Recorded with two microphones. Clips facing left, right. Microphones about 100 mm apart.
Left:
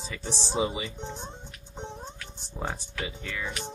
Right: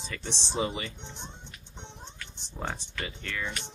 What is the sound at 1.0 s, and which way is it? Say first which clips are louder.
Music: left 6 dB; 40° left (ahead or behind).